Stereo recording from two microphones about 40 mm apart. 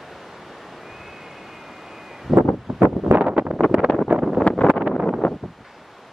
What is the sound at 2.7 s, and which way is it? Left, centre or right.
Wind noise, centre.